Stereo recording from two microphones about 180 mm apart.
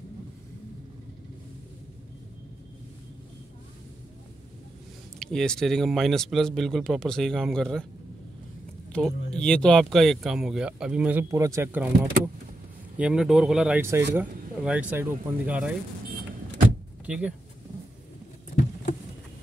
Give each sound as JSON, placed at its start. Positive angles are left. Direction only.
{"t": 5.2, "sound": "speech", "side_deg": 5}
{"t": 8.9, "sound": "speech", "side_deg": 5}
{"t": 17.0, "sound": "speech", "side_deg": -5}